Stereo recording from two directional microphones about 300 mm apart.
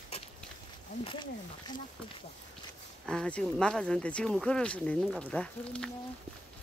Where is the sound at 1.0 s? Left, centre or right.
Centre.